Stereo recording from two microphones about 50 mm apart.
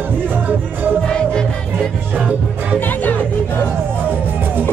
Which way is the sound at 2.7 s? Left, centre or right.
Left.